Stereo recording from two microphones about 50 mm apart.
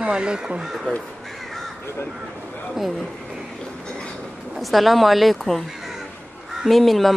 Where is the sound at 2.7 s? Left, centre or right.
Centre.